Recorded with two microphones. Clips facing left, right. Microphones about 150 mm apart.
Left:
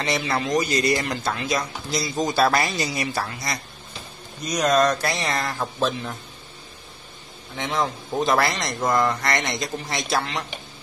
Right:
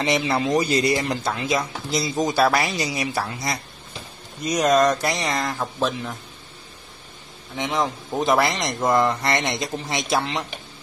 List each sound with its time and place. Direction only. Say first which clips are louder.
0.0 s speech: right 3 dB; 20° right (ahead or behind)
7.5 s speech: right 1 dB; 15° right (ahead or behind)